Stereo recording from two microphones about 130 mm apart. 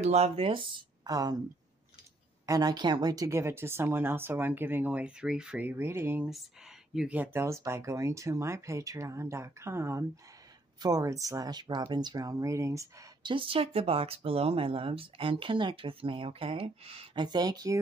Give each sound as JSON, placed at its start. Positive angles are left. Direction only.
{"t": 0.0, "sound": "speech", "side_deg": -55}
{"t": 2.4, "sound": "speech", "side_deg": -30}
{"t": 13.2, "sound": "speech", "side_deg": -40}